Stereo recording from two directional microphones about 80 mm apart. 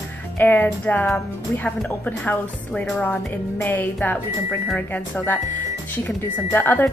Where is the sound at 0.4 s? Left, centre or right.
Left.